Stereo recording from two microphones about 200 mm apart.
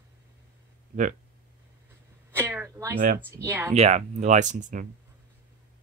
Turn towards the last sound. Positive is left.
turn(degrees=-40)  # may be behind; listen again after turning